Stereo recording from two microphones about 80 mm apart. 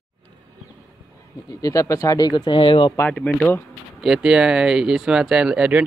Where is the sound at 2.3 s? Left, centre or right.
Left.